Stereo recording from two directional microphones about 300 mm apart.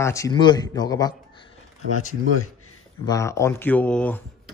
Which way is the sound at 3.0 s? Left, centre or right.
Centre.